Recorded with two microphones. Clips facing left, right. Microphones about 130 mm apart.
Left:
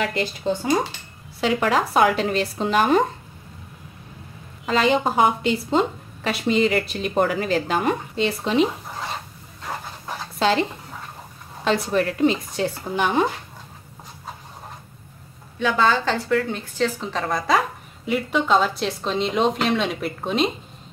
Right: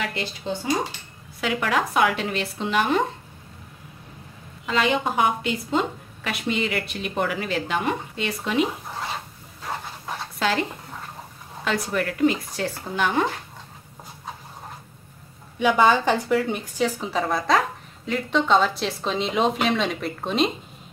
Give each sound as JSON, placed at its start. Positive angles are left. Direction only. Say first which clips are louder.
{"t": 0.1, "sound": "speech", "louder": "left 5 dB", "side_deg": 45}
{"t": 1.4, "sound": "a woman's voice", "louder": "left 3 dB", "side_deg": 35}
{"t": 4.6, "sound": "a woman's voice", "louder": "left 3 dB", "side_deg": 35}
{"t": 8.3, "sound": "speech", "louder": "left 3 dB", "side_deg": 30}
{"t": 10.4, "sound": "speech", "louder": "left 4 dB", "side_deg": 25}
{"t": 11.9, "sound": "speech", "louder": "even", "side_deg": 25}
{"t": 15.6, "sound": "a woman's voice", "louder": "right 2 dB", "side_deg": -15}